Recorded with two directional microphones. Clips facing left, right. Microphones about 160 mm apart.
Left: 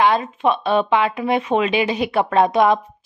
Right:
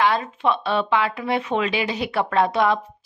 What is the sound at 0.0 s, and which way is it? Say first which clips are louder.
A woman's voice: left 3 dB; 20° left (ahead or behind).